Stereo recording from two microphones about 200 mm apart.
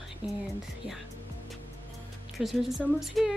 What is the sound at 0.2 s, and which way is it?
Speech, 5° right (ahead or behind).